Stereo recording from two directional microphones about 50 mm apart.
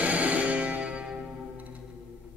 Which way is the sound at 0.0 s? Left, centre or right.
Right.